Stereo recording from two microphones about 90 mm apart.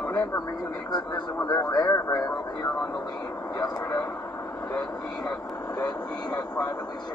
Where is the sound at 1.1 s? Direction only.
50° left (ahead or behind).